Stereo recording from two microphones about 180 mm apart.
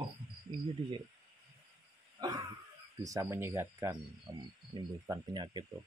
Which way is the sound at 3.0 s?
20° right (ahead or behind).